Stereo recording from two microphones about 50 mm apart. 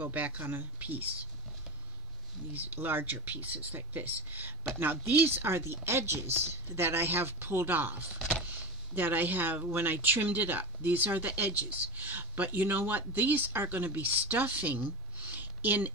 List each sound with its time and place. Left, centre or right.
0.0 s speech: right
2.5 s speech: right
8.5 s a sound: right
9.7 s speech: right